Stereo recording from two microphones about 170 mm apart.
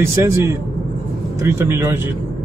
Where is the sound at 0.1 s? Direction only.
15° right (ahead or behind).